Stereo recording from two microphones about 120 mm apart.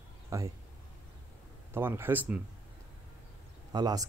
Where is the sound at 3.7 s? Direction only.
35° right (ahead or behind).